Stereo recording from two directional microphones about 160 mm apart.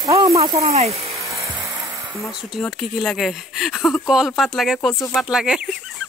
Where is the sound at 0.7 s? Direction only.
40° right (ahead or behind).